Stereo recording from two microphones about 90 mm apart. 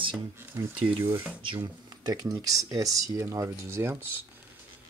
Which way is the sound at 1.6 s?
55° right (ahead or behind).